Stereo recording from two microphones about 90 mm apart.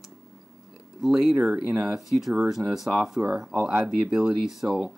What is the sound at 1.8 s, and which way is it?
Speech, 5° right (ahead or behind).